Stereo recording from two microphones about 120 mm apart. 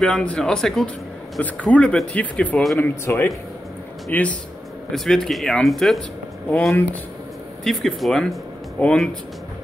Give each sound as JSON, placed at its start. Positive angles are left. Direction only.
{"t": 0.0, "sound": "speech", "side_deg": 10}